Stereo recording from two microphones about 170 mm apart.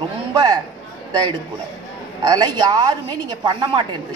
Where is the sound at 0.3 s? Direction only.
25° right (ahead or behind).